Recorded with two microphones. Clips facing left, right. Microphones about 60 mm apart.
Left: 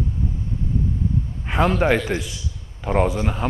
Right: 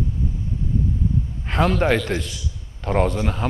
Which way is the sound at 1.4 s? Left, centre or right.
Centre.